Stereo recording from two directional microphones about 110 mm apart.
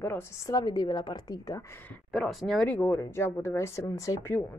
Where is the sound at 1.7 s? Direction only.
20° left (ahead or behind).